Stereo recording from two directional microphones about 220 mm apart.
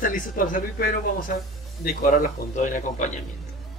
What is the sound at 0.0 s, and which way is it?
A man's voice, 40° left (ahead or behind).